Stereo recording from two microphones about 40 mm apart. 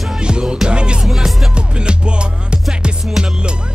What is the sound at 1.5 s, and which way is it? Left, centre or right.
Music, right.